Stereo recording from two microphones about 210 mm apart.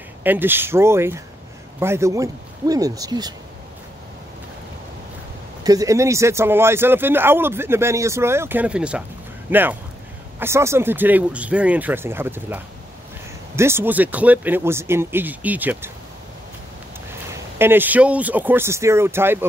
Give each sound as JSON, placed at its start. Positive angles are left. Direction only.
{"t": 0.2, "sound": "speech", "side_deg": -10}
{"t": 5.6, "sound": "speech", "side_deg": -15}
{"t": 17.3, "sound": "speech", "side_deg": -10}